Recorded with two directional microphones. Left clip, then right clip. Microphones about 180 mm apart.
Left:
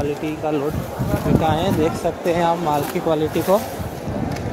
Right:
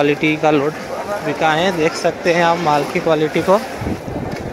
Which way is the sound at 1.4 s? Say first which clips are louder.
Right 7 dB; 5° left (ahead or behind).